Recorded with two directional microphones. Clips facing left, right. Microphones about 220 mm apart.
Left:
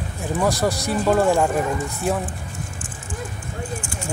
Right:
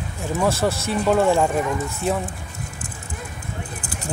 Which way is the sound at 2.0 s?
10° left (ahead or behind).